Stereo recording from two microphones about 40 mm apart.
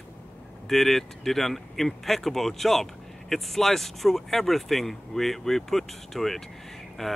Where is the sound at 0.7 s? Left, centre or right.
Centre.